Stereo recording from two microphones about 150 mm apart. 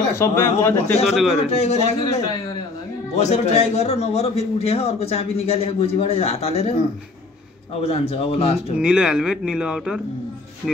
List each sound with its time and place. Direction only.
0.1 s a man's voice: 20° left (ahead or behind)
1.1 s speech: centre (ahead or behind)
1.5 s a man's voice: 45° left (ahead or behind)
7.8 s speech: 40° left (ahead or behind)
8.7 s speech: 5° right (ahead or behind)